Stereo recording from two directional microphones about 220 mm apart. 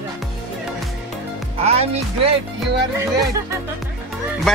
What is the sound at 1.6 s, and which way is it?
Speech, 30° right (ahead or behind).